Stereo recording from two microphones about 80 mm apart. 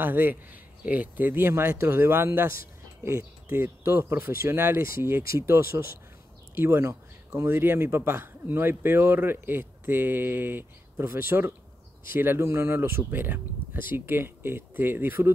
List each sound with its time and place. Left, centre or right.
0.0 s speech: right